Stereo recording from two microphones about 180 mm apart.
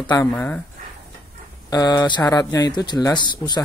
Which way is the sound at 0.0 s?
20° left (ahead or behind).